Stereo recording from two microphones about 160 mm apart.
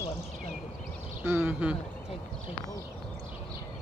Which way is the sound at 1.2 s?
15° right (ahead or behind).